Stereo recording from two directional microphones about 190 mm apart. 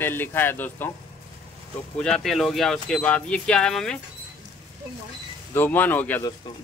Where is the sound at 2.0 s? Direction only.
Centre (ahead or behind).